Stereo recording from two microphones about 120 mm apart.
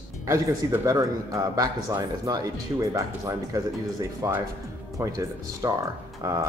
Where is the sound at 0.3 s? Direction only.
20° right (ahead or behind).